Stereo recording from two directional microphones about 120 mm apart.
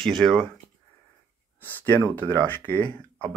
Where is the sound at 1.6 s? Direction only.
15° left (ahead or behind).